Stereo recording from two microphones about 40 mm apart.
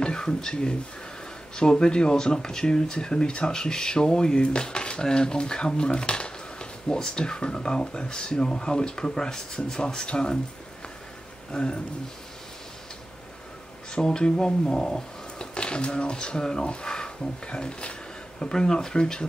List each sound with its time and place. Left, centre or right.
0.0 s speech: centre
11.5 s speech: left
13.9 s speech: centre